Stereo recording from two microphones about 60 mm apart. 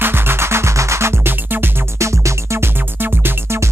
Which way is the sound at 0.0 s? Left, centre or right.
Right.